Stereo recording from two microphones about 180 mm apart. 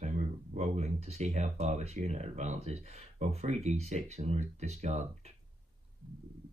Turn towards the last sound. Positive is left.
turn(degrees=-40)  # may be behind; listen again after turning